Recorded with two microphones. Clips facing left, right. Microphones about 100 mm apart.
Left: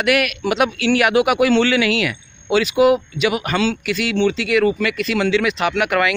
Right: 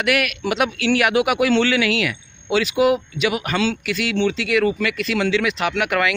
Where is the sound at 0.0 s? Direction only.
10° left (ahead or behind).